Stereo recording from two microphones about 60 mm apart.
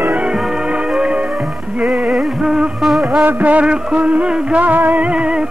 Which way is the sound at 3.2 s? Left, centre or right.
Right.